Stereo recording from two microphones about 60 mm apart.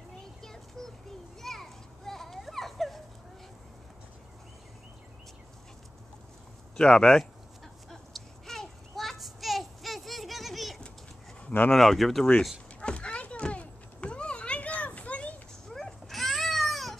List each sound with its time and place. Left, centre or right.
0.4 s child singing: centre
1.4 s children playing: centre
6.8 s a sound: centre
11.7 s speech: centre
12.8 s children playing: centre
15.7 s dog: centre